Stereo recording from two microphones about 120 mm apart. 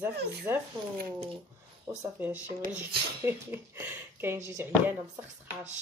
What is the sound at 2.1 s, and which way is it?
Speech, 15° right (ahead or behind).